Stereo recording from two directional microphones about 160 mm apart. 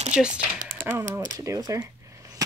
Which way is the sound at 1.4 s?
20° right (ahead or behind).